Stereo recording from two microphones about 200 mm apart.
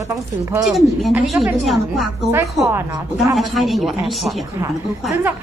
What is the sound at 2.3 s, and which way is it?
Speech, 15° right (ahead or behind).